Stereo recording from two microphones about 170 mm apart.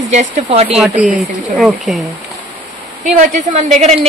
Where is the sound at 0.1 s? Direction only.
40° right (ahead or behind).